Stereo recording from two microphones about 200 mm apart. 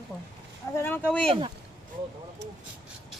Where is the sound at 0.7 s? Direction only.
10° left (ahead or behind).